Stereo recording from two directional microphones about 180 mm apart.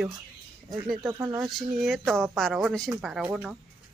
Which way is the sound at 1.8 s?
Centre (ahead or behind).